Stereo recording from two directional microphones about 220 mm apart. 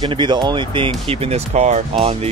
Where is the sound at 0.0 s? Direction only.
20° right (ahead or behind).